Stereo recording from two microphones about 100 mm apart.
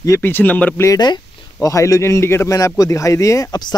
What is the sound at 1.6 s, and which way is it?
A man's voice, 30° left (ahead or behind).